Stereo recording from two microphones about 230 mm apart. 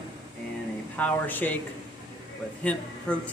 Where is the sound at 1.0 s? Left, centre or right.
Centre.